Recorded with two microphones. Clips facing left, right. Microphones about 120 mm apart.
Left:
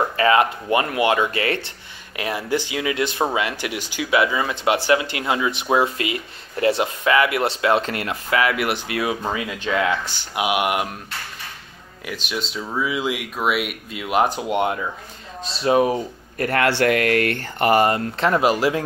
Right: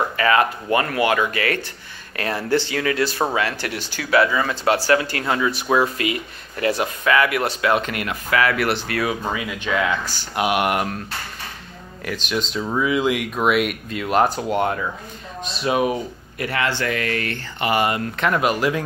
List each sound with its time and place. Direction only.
0.2 s speech: 20° left (ahead or behind)
2.1 s speech: 10° left (ahead or behind)
10.3 s speech: 10° left (ahead or behind)
12.1 s speech: 5° left (ahead or behind)
15.4 s speech: 30° left (ahead or behind)
16.3 s speech: 45° left (ahead or behind)
16.6 s speech: 65° left (ahead or behind); by 18.9 s 25° left (ahead or behind)